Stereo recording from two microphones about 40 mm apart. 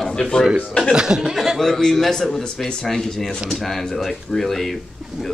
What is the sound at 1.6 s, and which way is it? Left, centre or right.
A man's voice, centre.